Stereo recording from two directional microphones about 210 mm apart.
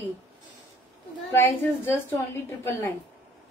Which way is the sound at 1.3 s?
10° left (ahead or behind).